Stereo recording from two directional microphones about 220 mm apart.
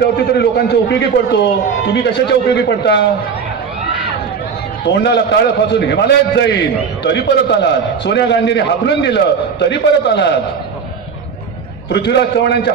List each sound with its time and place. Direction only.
0.3 s a man's voice: 50° left (ahead or behind)
4.8 s a man's voice: 50° left (ahead or behind)
11.9 s a man's voice: 50° left (ahead or behind)